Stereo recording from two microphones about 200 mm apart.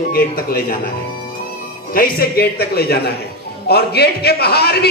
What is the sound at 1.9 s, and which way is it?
A man's voice, 45° left (ahead or behind).